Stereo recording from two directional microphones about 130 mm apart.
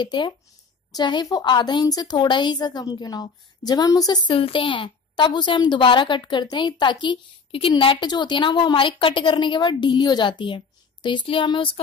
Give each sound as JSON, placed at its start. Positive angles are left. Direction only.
{"t": 0.0, "sound": "speech", "side_deg": 35}